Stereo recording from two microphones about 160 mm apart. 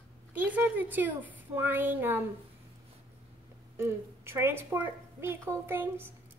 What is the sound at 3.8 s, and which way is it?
A woman's voice, 15° right (ahead or behind).